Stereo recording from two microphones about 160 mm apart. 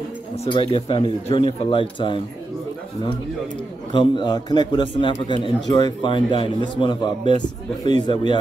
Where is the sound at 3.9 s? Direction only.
30° left (ahead or behind).